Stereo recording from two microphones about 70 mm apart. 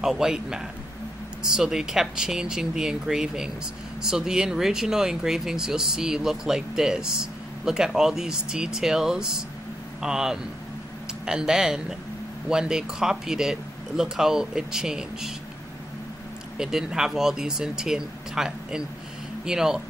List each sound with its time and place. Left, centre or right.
0.0 s speech: centre
16.5 s speech: centre